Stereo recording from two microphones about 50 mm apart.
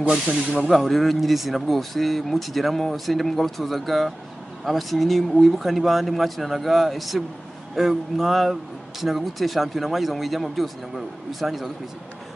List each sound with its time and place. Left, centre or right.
0.0 s speech: right
0.7 s speech: centre